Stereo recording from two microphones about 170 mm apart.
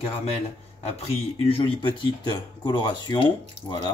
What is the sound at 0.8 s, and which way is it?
Speech, 35° left (ahead or behind).